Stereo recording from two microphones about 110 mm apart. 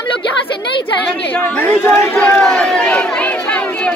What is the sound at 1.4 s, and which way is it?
Speech, 20° left (ahead or behind).